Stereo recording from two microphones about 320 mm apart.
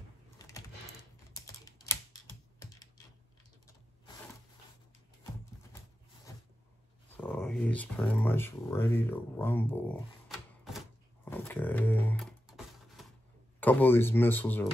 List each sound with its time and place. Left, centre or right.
0.4 s typing: centre
2.1 s computer keyboard: centre
7.1 s speech: centre
11.2 s a sound: centre
13.6 s speech: centre